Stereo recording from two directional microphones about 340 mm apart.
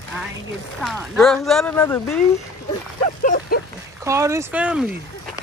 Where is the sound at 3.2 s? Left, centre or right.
Left.